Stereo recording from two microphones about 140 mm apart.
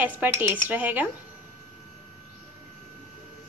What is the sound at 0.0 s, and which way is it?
A woman's voice, 10° right (ahead or behind).